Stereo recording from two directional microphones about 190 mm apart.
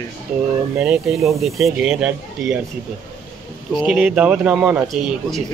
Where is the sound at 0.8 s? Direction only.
5° right (ahead or behind).